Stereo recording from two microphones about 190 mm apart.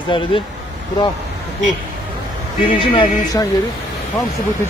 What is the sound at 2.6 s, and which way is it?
Speech, 25° left (ahead or behind).